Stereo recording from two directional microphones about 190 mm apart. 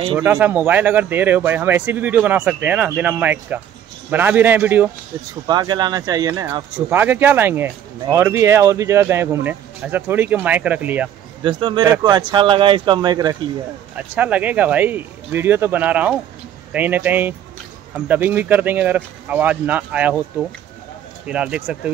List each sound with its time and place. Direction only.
0.2 s speech: 10° right (ahead or behind)
5.5 s speech: 20° right (ahead or behind)
11.4 s speech: 25° right (ahead or behind)
13.9 s speech: 10° right (ahead or behind)
21.3 s speech: 5° right (ahead or behind)